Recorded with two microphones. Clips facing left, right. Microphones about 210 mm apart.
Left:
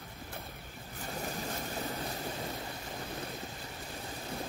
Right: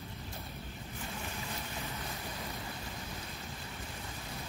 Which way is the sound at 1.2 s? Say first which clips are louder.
Left 8 dB; 40° left (ahead or behind).